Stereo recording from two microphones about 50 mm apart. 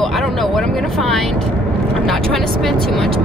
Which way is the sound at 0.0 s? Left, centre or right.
Centre.